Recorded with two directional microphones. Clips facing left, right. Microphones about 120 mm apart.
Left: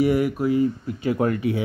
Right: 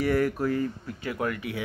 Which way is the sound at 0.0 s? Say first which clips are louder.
Left 4 dB; 15° left (ahead or behind).